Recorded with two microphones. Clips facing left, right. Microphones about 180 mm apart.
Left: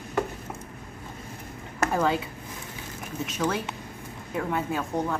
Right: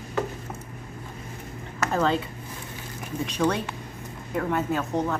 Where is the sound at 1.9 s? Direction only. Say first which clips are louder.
Right 2 dB; 10° left (ahead or behind).